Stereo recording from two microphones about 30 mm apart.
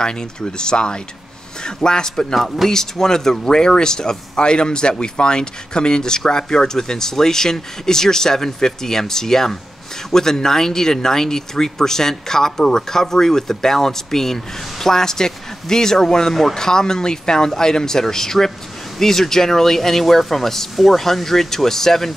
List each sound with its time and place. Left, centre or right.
0.0 s speech: left
2.3 s speech: centre
2.7 s speech: centre